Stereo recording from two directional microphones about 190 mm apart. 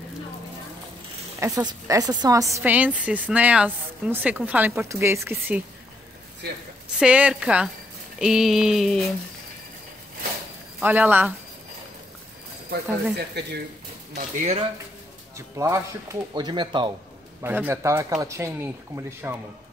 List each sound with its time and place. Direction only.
1.4 s a woman's voice: 20° right (ahead or behind)
7.0 s a sound: 5° right (ahead or behind)
10.8 s a woman's voice: 10° right (ahead or behind)
13.4 s speech: 60° right (ahead or behind)
14.1 s speech: 35° right (ahead or behind)
15.3 s a woman's voice: 15° right (ahead or behind)
17.4 s a woman's voice: 10° right (ahead or behind)